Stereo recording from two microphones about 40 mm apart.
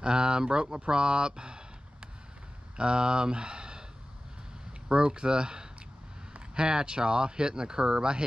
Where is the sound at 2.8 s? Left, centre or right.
Right.